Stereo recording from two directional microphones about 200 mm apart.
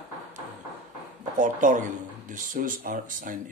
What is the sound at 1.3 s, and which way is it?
Speech, 40° right (ahead or behind).